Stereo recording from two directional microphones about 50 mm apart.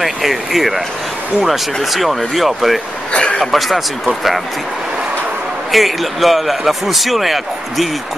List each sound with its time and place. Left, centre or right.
0.0 s a man's voice: centre
3.1 s a sound: left
3.5 s a man's voice: centre
5.7 s a man's voice: centre